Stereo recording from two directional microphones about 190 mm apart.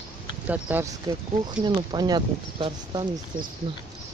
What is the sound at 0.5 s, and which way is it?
Speech, 10° right (ahead or behind).